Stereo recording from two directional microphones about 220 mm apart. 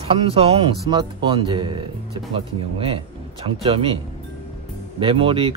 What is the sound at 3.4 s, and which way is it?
A man's voice, 25° right (ahead or behind).